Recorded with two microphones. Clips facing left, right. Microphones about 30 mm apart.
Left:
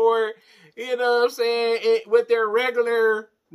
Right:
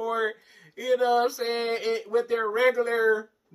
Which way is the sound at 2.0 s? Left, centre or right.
Left.